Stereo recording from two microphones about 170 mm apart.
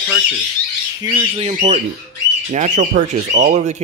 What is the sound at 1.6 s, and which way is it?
Speech, 45° right (ahead or behind).